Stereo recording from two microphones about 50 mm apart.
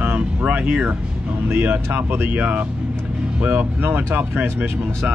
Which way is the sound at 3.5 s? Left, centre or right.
Right.